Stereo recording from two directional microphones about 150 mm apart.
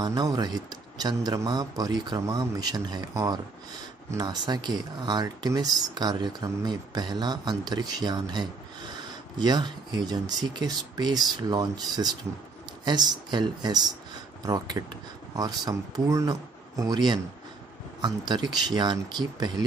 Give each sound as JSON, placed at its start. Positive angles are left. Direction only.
{"t": 0.0, "sound": "speech", "side_deg": -25}